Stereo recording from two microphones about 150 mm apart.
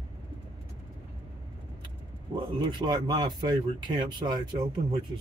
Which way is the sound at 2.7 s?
30° right (ahead or behind).